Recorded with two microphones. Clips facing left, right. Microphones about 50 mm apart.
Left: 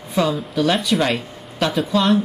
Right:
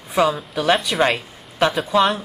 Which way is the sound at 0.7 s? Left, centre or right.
Centre.